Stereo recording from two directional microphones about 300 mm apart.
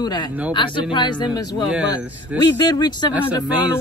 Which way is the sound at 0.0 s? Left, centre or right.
Centre.